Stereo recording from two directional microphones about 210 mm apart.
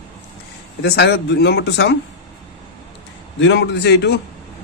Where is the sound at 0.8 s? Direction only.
50° left (ahead or behind).